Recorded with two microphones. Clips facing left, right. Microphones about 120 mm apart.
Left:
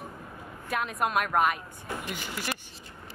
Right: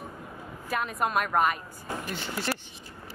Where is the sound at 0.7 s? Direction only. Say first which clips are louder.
Even; centre (ahead or behind).